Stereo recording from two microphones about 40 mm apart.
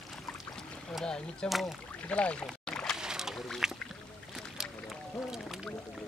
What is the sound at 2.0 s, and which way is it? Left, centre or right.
Speech, left.